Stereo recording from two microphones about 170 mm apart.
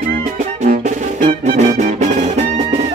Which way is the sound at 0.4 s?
50° right (ahead or behind).